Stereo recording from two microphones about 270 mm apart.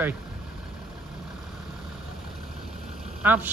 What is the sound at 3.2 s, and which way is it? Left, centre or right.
Speech, centre.